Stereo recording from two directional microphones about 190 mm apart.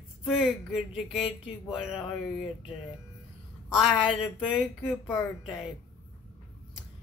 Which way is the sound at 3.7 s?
Centre (ahead or behind).